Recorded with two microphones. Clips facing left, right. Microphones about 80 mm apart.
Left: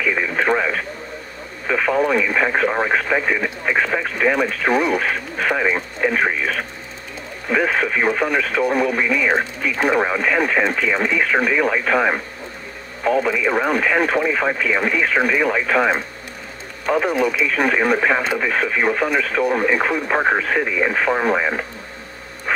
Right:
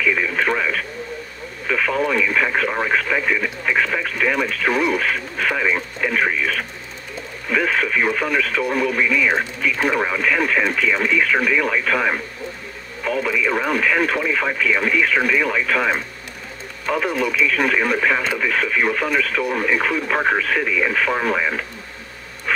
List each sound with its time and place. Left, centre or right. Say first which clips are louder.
0.0 s radio: even; centre
1.7 s speech: left 2 dB; left